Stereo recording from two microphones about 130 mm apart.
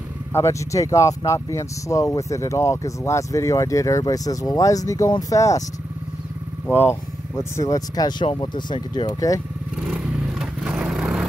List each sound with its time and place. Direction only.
0.3 s speech: 20° left (ahead or behind)
6.7 s speech: 20° left (ahead or behind)
9.8 s vehicle: 5° right (ahead or behind)